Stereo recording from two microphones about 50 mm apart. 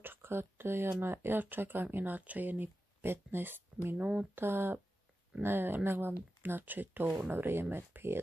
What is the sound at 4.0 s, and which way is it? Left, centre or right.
Speech, right.